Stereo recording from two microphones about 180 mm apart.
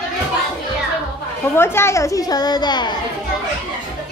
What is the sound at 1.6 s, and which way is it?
A woman's voice, 15° left (ahead or behind).